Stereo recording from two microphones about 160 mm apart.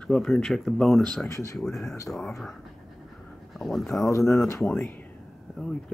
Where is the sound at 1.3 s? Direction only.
20° left (ahead or behind).